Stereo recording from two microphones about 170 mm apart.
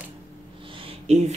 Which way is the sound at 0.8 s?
35° right (ahead or behind).